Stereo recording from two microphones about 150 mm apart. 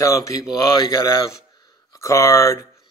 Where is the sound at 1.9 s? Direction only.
20° left (ahead or behind).